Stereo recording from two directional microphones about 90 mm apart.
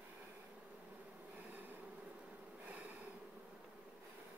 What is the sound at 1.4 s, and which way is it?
Bee, 15° right (ahead or behind).